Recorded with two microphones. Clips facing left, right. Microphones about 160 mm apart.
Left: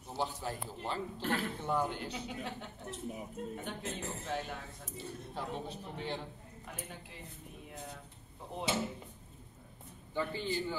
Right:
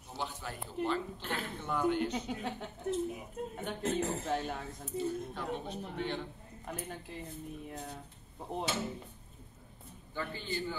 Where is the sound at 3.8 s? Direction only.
75° right (ahead or behind).